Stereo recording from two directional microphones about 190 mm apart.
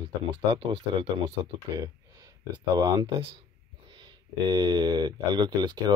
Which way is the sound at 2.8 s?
20° right (ahead or behind).